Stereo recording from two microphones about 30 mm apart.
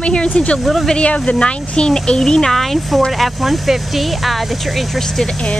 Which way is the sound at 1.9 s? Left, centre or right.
Left.